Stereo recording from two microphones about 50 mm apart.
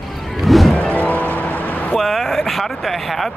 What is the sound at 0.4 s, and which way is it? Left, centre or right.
Music, centre.